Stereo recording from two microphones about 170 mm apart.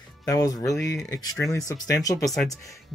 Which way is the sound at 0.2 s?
20° left (ahead or behind).